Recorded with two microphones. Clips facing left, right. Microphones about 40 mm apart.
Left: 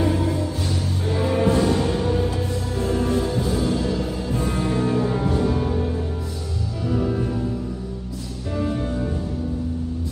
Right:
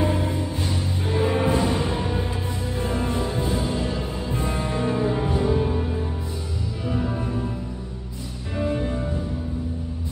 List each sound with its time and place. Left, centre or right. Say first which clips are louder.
0.0 s music: left 2 dB; right
7.0 s music: left 4 dB; centre
8.5 s music: even; right